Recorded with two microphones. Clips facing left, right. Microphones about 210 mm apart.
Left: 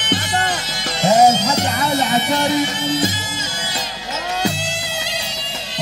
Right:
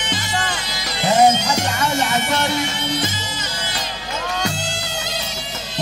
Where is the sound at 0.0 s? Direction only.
55° left (ahead or behind).